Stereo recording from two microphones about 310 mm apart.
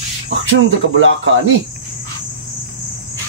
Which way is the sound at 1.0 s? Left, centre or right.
Right.